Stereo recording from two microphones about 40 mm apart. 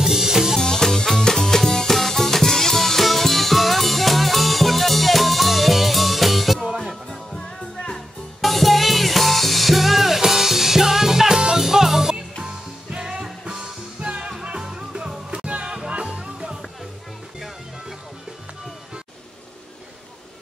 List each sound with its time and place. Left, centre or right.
0.0 s music: centre
0.6 s music: centre
7.3 s music: centre
8.4 s music: centre; by 15.4 s right
15.4 s music: right